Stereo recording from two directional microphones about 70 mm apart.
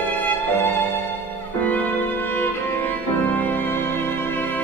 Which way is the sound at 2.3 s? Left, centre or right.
Left.